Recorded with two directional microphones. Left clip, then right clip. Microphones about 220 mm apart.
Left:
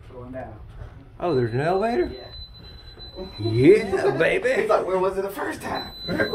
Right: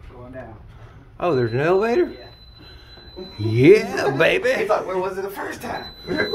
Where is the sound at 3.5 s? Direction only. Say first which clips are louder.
Right 3 dB; 35° right (ahead or behind).